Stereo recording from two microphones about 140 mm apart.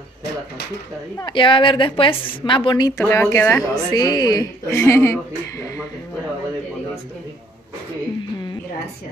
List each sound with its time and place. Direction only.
1.2 s a woman's voice: 35° left (ahead or behind)
3.1 s speech: 15° left (ahead or behind)
3.9 s speech: 25° left (ahead or behind)